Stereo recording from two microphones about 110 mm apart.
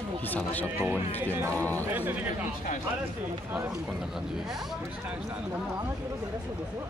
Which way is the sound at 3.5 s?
20° right (ahead or behind).